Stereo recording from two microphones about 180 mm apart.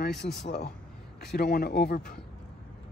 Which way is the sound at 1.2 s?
65° left (ahead or behind).